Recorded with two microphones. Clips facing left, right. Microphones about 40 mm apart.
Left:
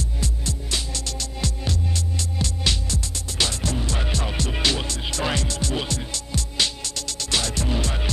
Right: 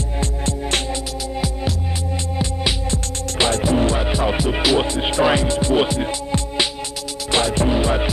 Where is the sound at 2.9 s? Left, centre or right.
Right.